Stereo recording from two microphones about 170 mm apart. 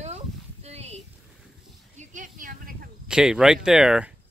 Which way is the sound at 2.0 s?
50° right (ahead or behind).